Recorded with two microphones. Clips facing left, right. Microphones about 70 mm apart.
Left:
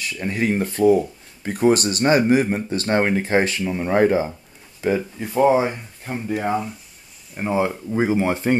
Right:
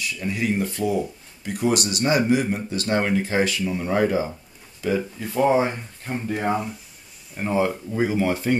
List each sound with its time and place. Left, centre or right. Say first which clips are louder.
0.2 s speech: left 3 dB; left
5.4 s speech: left 3 dB; centre
7.3 s speech: left 1 dB; centre